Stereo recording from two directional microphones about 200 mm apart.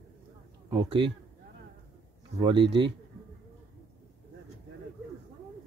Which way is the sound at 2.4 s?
25° right (ahead or behind).